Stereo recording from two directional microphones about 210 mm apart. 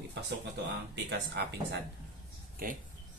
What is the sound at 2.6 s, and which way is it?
Speech, 45° right (ahead or behind).